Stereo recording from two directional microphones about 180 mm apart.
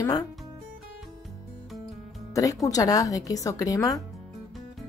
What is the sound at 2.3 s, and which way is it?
Speech, 20° left (ahead or behind).